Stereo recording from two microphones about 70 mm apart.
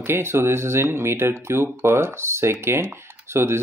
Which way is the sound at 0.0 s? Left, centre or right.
Right.